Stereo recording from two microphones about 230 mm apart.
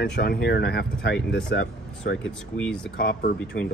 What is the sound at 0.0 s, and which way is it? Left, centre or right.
Speech, left.